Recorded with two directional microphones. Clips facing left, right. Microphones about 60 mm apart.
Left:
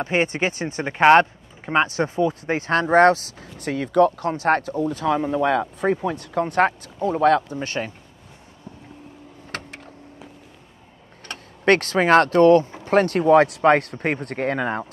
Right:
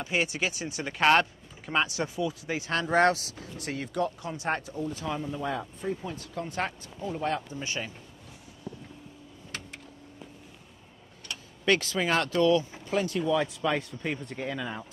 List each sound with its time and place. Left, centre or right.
0.0 s speech: left
7.0 s speech: left
7.4 s speech: left
9.5 s a sound: left
11.2 s speech: left